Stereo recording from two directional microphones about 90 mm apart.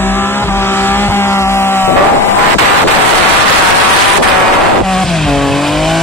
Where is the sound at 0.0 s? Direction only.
25° left (ahead or behind).